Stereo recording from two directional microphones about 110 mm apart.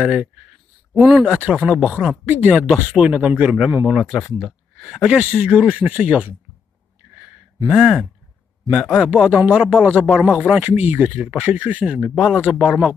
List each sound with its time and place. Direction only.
0.0 s speech: 10° right (ahead or behind)
2.7 s speech: 5° right (ahead or behind)
7.6 s speech: 5° right (ahead or behind)